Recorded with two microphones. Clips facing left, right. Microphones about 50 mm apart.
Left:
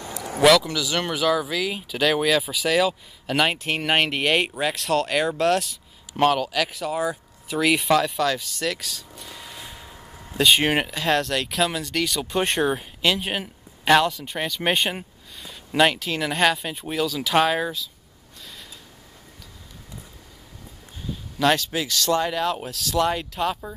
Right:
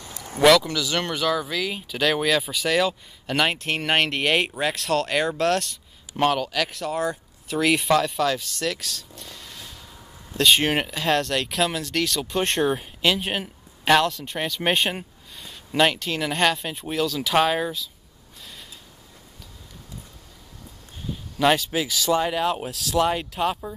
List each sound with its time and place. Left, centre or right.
0.4 s speech: centre
10.3 s speech: centre
18.4 s mechanisms: centre
21.4 s speech: centre